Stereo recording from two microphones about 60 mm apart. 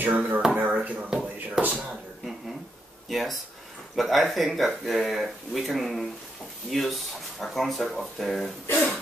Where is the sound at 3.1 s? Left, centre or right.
Centre.